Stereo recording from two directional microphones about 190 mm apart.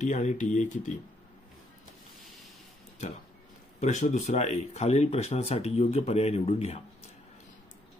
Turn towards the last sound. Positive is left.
turn(degrees=30)  # may be behind; listen again after turning